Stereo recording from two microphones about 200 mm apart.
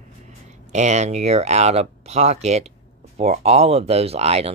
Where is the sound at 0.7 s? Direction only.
35° right (ahead or behind).